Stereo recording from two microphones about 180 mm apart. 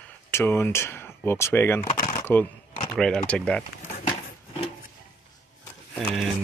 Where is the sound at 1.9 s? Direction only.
40° left (ahead or behind).